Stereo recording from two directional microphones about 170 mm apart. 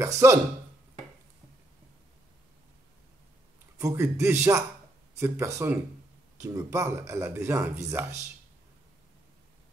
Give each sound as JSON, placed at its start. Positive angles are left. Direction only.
{"t": 0.0, "sound": "speech", "side_deg": -15}
{"t": 3.7, "sound": "speech", "side_deg": -15}